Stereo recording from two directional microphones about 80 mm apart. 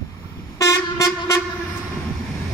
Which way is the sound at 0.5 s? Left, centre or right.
Left.